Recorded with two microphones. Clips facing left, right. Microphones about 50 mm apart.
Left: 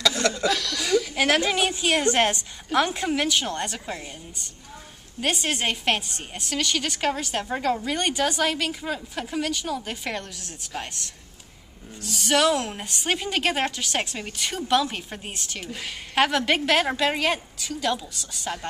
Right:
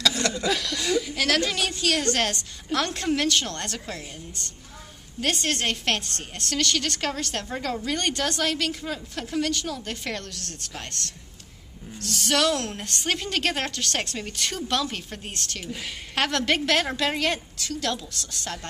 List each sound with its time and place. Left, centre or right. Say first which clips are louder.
0.5 s speech: left 1 dB; centre
0.8 s a sound: left 3 dB; centre
1.1 s a woman's voice: left 3 dB; left